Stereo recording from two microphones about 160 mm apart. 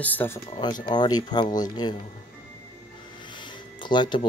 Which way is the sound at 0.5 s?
25° left (ahead or behind).